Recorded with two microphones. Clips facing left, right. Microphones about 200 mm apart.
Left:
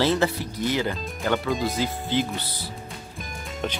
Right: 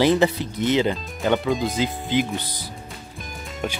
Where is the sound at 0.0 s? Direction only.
15° right (ahead or behind).